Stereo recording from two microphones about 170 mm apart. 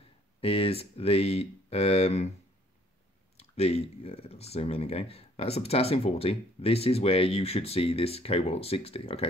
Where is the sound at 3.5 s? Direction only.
40° left (ahead or behind).